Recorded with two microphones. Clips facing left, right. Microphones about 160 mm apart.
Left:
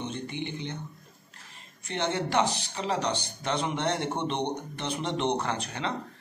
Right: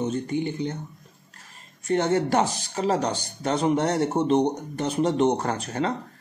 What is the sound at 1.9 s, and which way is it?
Speech, 45° right (ahead or behind).